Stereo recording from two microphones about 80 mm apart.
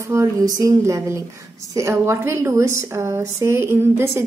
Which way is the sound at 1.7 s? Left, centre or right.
Right.